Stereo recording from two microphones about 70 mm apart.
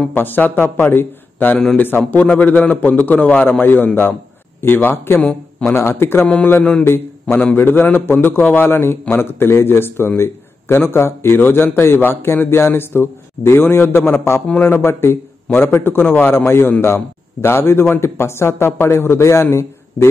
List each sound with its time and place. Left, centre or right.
0.1 s a man's voice: left